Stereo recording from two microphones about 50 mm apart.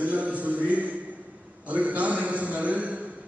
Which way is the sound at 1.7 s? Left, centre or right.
Right.